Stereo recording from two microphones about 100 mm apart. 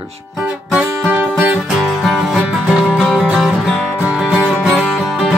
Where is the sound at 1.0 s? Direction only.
15° right (ahead or behind).